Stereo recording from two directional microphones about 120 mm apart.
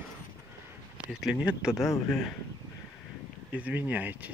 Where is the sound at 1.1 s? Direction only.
5° right (ahead or behind).